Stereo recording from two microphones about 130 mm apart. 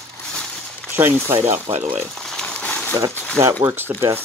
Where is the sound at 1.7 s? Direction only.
45° right (ahead or behind).